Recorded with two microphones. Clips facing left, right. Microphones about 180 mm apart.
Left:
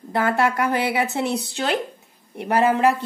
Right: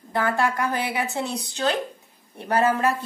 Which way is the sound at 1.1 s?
25° left (ahead or behind).